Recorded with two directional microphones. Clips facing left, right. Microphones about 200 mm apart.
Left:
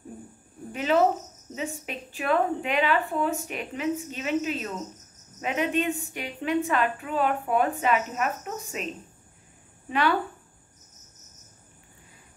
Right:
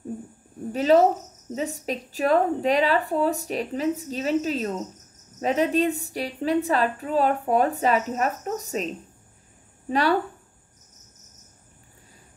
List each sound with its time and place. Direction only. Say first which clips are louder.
0.7 s a woman's voice: right 4 dB; 35° right (ahead or behind)
9.8 s speech: right 3 dB; 35° right (ahead or behind)